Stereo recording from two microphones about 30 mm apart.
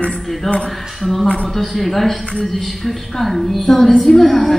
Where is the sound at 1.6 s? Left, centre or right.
Centre.